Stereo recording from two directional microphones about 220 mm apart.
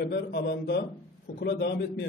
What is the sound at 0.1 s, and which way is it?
A man's voice, 50° left (ahead or behind).